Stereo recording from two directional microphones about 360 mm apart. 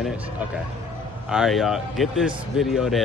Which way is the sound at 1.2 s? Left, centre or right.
Centre.